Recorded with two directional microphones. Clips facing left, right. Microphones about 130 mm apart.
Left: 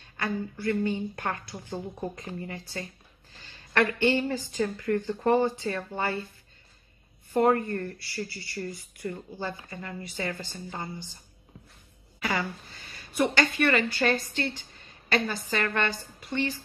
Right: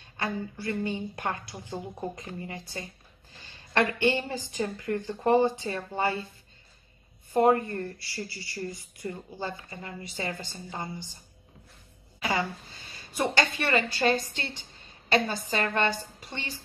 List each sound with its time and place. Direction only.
0.2 s speech: 20° right (ahead or behind)
7.3 s speech: 20° right (ahead or behind)
12.2 s speech: 20° right (ahead or behind)